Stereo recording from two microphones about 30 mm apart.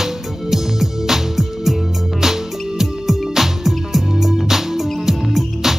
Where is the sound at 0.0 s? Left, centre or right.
Centre.